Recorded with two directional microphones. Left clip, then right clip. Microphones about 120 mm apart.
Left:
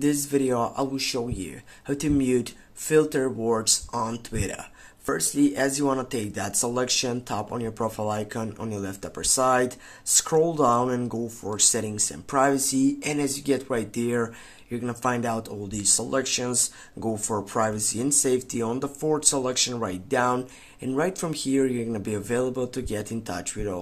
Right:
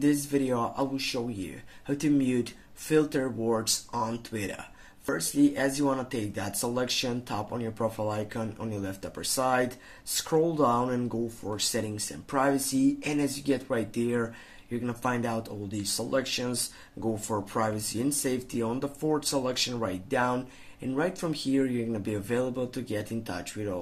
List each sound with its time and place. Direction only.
0.0 s speech: 40° left (ahead or behind)